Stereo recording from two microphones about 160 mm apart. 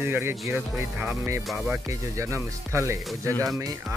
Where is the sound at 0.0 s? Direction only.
15° right (ahead or behind).